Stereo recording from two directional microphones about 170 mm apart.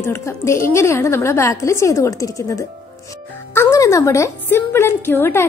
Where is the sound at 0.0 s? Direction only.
15° left (ahead or behind).